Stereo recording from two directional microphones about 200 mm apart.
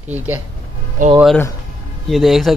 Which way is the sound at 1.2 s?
10° left (ahead or behind).